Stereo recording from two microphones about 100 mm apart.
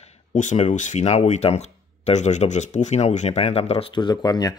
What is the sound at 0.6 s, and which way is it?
Speech, 90° left.